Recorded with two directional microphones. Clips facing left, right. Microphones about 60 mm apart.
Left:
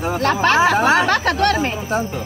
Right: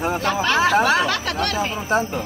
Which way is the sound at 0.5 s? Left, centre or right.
Left.